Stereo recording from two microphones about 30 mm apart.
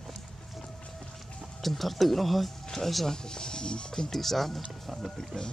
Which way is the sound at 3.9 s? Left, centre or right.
Centre.